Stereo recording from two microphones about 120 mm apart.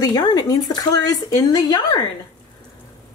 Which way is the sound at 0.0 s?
30° left (ahead or behind).